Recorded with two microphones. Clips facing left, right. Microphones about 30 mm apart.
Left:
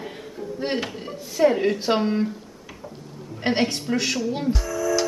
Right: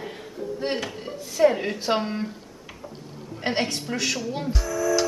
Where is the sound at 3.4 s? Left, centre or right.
Centre.